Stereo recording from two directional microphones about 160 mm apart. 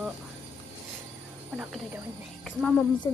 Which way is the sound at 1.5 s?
5° right (ahead or behind).